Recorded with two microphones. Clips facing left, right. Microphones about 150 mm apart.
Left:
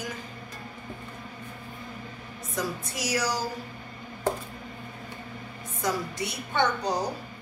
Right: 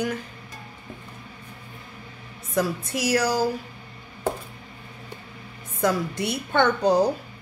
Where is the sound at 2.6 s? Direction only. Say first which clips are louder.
Right 7 dB; 60° right (ahead or behind).